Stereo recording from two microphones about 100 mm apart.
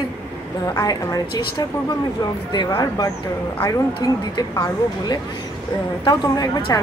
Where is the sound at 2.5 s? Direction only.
50° left (ahead or behind).